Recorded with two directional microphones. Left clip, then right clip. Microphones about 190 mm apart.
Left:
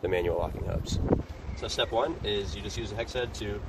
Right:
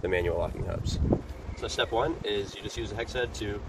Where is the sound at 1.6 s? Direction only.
10° right (ahead or behind).